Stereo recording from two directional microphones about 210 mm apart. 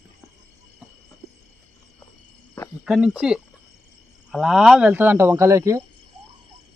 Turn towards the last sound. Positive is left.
turn(degrees=-15)  # may be behind; listen again after turning